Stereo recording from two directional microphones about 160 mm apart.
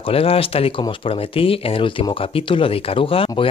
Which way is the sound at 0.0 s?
35° left (ahead or behind).